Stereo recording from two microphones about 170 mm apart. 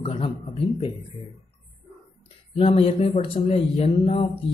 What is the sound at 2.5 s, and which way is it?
Speech, 35° left (ahead or behind).